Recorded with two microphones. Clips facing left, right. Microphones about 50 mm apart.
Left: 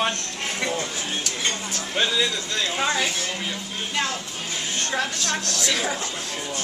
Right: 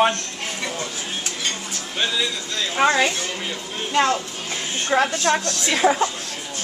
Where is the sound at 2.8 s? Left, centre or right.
Right.